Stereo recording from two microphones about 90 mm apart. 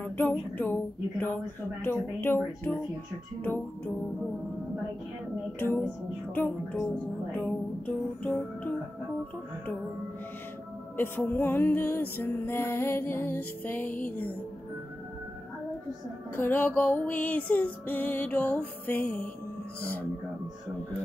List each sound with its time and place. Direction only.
0.0 s music: 20° left (ahead or behind)
6.3 s music: 20° left (ahead or behind)
11.0 s music: 20° left (ahead or behind)
16.3 s music: 20° left (ahead or behind)